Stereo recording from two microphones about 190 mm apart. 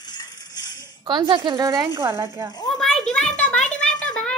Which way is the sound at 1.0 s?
25° right (ahead or behind).